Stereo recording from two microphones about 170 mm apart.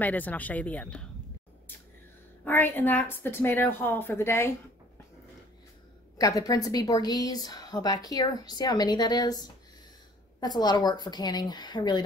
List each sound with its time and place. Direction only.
0.0 s a woman's voice: 10° left (ahead or behind)
2.4 s a woman's voice: 10° left (ahead or behind)
6.1 s a woman's voice: 20° left (ahead or behind)